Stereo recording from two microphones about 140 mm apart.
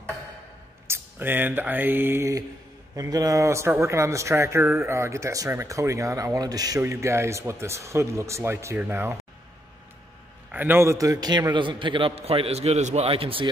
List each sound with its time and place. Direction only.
0.8 s a sound: 15° right (ahead or behind)
3.0 s speech: 25° right (ahead or behind)
10.5 s a man's voice: 15° right (ahead or behind); by 13.5 s 40° right (ahead or behind)